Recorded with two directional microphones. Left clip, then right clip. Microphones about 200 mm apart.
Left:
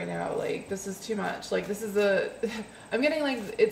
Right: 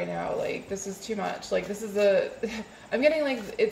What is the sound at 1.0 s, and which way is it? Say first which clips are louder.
Speech: even; 20° left (ahead or behind).